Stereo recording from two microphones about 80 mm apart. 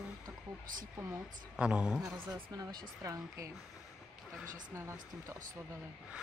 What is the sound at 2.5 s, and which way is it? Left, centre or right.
Speech, right.